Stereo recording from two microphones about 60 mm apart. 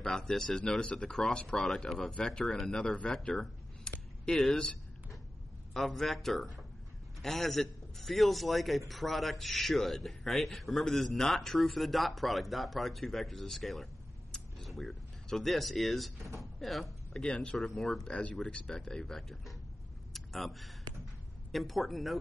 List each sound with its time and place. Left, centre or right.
0.0 s a man's voice: centre
5.7 s a man's voice: centre
14.3 s a sound: centre
16.3 s a man's voice: centre
18.0 s speech: centre
20.1 s a sound: centre
21.5 s a man's voice: centre